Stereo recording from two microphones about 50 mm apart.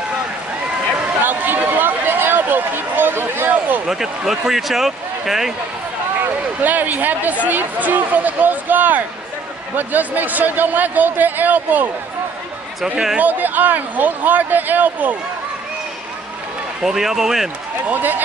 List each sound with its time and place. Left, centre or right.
1.2 s a sound: right
3.8 s speech: centre
6.6 s speech: right
12.8 s speech: centre
13.2 s speech: right
16.8 s speech: centre
17.8 s speech: right